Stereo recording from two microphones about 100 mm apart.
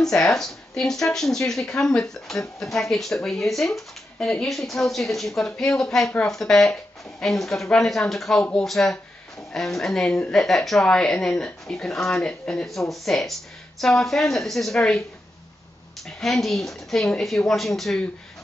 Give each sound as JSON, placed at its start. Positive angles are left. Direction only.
{"t": 0.0, "sound": "speech", "side_deg": 5}
{"t": 16.2, "sound": "speech", "side_deg": 0}